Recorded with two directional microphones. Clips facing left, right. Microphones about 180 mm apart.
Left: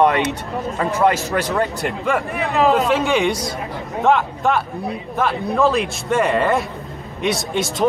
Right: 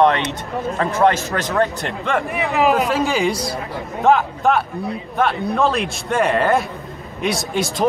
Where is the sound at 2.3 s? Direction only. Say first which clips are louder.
Even; 15° right (ahead or behind).